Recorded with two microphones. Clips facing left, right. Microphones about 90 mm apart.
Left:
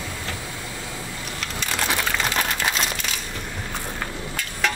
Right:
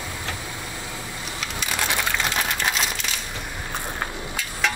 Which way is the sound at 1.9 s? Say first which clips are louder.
Left 1 dB; centre (ahead or behind).